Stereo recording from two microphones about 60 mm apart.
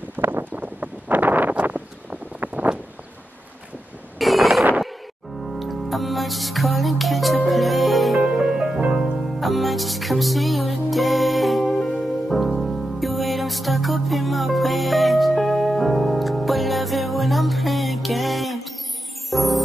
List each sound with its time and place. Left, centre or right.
0.1 s a sound: right
4.2 s wind noise: centre
5.6 s music: centre
8.2 s music: centre